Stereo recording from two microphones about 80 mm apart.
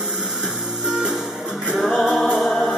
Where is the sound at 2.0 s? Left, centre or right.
Centre.